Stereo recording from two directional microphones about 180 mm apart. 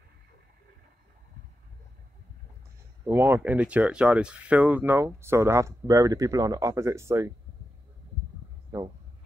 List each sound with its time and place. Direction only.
3.1 s speech: 15° right (ahead or behind)
8.7 s speech: 20° right (ahead or behind)